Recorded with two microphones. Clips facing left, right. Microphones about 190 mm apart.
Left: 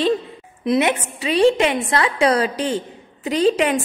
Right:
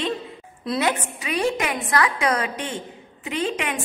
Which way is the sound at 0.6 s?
20° left (ahead or behind).